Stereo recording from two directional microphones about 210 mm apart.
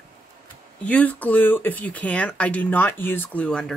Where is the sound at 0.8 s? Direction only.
5° left (ahead or behind).